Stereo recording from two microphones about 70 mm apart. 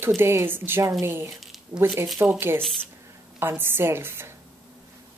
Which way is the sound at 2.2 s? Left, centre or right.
Right.